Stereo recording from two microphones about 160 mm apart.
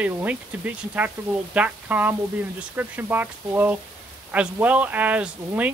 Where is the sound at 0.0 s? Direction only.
10° right (ahead or behind).